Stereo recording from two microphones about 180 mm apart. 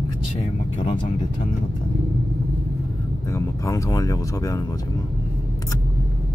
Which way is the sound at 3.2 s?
15° left (ahead or behind).